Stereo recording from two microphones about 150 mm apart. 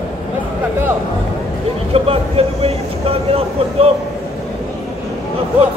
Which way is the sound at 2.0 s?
40° right (ahead or behind).